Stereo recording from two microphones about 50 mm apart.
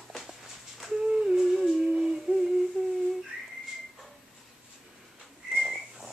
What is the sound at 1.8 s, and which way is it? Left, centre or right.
Humming, centre.